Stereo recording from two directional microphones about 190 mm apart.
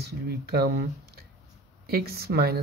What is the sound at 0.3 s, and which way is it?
Speech, 55° right (ahead or behind).